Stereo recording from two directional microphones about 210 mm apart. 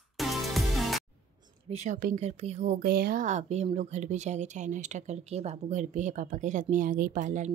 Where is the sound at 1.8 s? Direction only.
35° right (ahead or behind).